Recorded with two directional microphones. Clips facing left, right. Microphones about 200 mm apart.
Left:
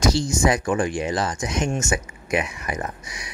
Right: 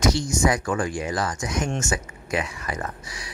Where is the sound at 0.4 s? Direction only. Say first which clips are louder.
Left 3 dB; 20° left (ahead or behind).